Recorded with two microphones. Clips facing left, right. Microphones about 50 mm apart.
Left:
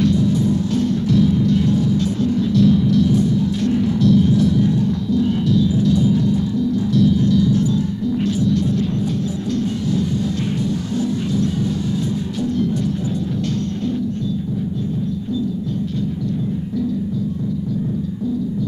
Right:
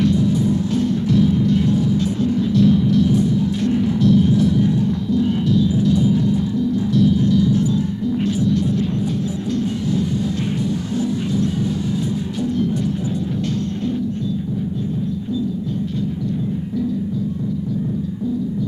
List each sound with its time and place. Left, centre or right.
0.0 s music: centre